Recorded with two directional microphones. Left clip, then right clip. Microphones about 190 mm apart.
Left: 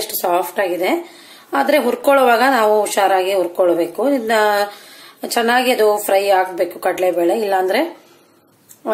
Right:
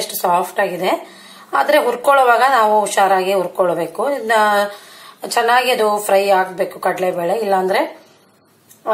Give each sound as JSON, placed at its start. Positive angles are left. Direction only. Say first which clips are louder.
{"t": 0.3, "sound": "speech", "louder": "right 1 dB", "side_deg": 35}